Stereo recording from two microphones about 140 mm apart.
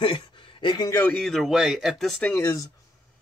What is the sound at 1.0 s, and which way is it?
Speech, 5° left (ahead or behind).